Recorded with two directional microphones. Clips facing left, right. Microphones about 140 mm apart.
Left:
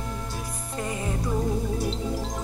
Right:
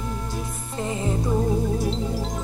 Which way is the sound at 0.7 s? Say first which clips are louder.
Right 4 dB; 25° right (ahead or behind).